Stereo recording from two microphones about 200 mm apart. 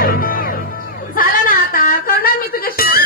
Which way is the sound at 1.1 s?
45° left (ahead or behind).